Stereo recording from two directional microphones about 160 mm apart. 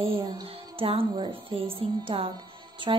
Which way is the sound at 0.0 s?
35° right (ahead or behind).